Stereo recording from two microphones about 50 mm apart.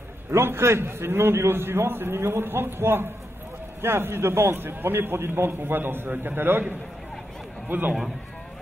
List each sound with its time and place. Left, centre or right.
0.3 s a man's voice: right